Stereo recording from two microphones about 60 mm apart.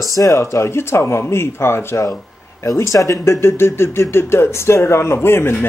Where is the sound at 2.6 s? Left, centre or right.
Left.